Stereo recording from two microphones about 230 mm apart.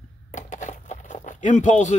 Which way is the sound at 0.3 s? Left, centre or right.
Left.